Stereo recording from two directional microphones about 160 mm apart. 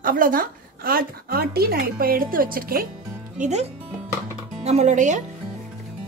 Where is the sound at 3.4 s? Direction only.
45° right (ahead or behind).